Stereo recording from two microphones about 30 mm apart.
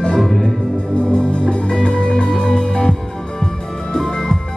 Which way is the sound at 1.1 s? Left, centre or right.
Left.